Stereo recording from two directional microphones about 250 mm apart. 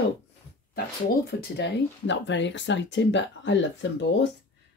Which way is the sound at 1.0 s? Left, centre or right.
Left.